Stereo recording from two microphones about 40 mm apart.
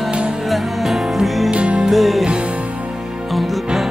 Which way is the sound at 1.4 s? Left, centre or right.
Right.